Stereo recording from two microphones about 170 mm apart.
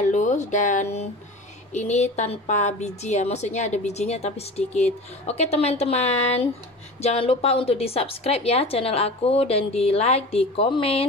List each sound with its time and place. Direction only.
0.1 s music: 45° left (ahead or behind)
1.7 s a woman's voice: 40° left (ahead or behind)